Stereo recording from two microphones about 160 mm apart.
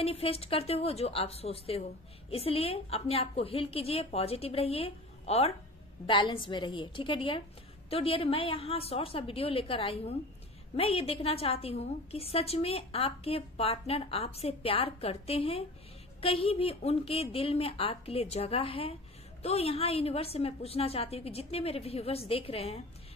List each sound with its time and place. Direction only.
0.0 s a woman's voice: 35° left (ahead or behind)